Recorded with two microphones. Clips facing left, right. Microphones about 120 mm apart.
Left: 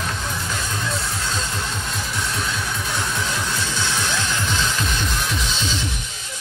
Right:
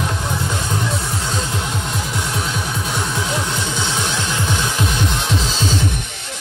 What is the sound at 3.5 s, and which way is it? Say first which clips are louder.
Music: right 3 dB; 20° right (ahead or behind).